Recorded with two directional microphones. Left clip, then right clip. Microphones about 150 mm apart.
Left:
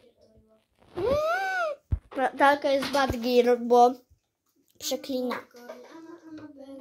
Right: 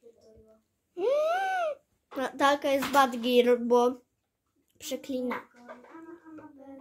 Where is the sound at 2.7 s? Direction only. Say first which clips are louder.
Right 1 dB; 30° right (ahead or behind).